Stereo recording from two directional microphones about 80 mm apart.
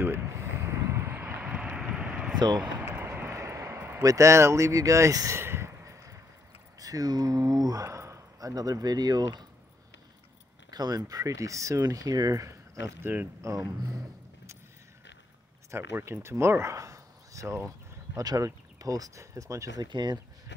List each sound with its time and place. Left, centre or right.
0.0 s vehicle: right
1.2 s vehicle: centre
2.6 s a sound: right
4.0 s speech: right
5.4 s a sound: right
6.8 s speech: right
10.7 s speech: right
15.7 s speech: right
18.1 s speech: right
19.8 s speech: right